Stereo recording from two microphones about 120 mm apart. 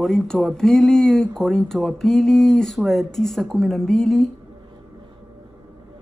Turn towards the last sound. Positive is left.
turn(degrees=0)  # may be behind; listen again after turning